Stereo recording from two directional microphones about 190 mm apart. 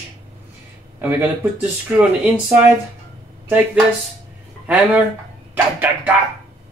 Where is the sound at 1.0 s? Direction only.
10° right (ahead or behind).